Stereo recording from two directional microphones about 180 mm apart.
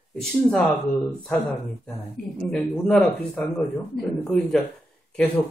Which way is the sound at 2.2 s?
55° left (ahead or behind).